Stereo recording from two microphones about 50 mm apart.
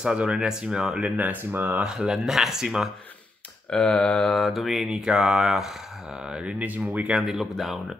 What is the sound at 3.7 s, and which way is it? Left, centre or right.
Speech, centre.